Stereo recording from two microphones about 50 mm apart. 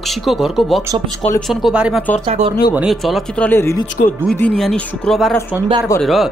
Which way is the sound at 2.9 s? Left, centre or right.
Centre.